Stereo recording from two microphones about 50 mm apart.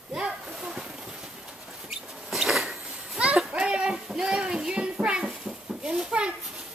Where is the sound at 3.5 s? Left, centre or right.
Centre.